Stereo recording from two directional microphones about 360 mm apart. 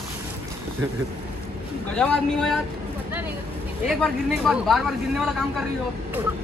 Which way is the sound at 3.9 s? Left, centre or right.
Centre.